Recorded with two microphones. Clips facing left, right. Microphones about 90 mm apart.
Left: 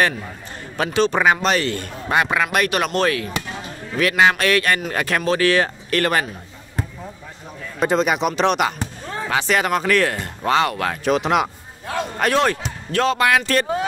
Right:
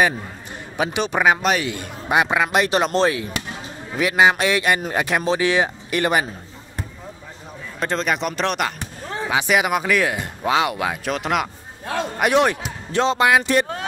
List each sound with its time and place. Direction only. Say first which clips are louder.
0.7 s a man's voice: left 3 dB; 10° right (ahead or behind)
7.8 s a man's voice: left 4 dB; 5° left (ahead or behind); by 11.0 s 10° right (ahead or behind)
11.1 s speech: left 7 dB; centre (ahead or behind)
12.2 s a man's voice: right 1 dB; 15° right (ahead or behind)